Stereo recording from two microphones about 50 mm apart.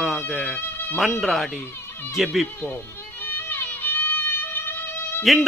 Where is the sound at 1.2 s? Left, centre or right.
Centre.